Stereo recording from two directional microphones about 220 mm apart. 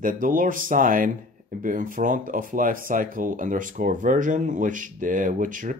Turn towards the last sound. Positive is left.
turn(degrees=-35)  # may be behind; listen again after turning